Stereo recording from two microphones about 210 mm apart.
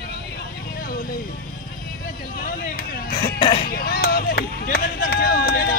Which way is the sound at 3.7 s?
45° left (ahead or behind).